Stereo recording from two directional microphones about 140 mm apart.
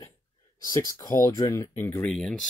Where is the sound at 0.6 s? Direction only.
25° left (ahead or behind).